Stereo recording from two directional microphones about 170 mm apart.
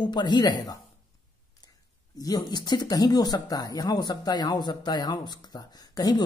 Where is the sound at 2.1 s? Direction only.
25° left (ahead or behind).